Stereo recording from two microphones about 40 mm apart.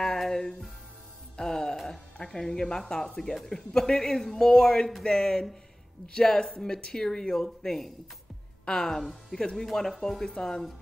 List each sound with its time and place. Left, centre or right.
0.0 s music: centre
1.3 s speech: centre
2.4 s speech: centre